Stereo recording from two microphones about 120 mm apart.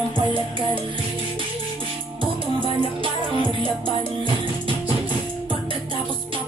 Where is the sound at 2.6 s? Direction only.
45° right (ahead or behind).